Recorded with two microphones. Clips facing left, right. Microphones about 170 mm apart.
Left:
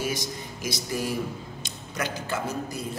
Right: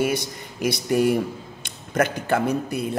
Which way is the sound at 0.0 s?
60° right (ahead or behind).